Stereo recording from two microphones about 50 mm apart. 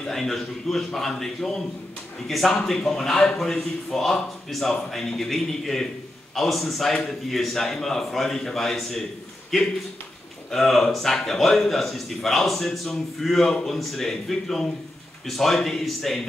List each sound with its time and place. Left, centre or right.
0.0 s a man's voice: centre